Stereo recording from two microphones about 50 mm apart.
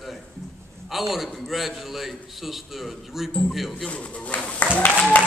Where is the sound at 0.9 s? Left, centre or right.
Centre.